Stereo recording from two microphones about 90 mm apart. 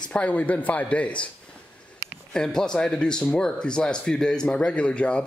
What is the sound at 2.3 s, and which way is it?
Speech, 5° left (ahead or behind).